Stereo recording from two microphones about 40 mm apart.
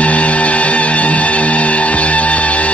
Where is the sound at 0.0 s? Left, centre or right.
Left.